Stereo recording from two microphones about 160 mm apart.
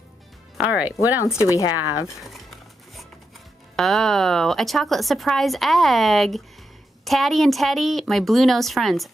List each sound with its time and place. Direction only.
0.6 s speech: 10° right (ahead or behind)
1.2 s a woman's voice: 20° left (ahead or behind)
2.2 s music: centre (ahead or behind)
3.7 s speech: centre (ahead or behind)